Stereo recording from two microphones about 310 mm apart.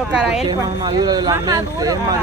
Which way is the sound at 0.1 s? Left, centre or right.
Centre.